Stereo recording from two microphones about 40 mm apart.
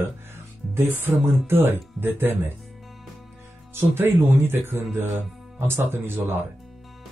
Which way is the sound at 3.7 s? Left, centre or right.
Right.